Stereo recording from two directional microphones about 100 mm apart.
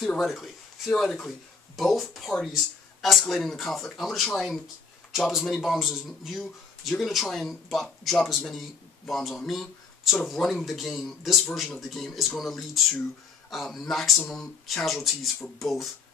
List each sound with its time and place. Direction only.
0.0 s a man's voice: centre (ahead or behind)